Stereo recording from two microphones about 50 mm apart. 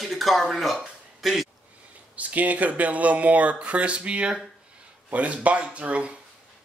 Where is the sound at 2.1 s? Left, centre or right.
Right.